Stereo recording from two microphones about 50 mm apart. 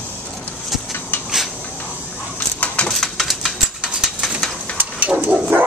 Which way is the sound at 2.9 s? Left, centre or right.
Centre.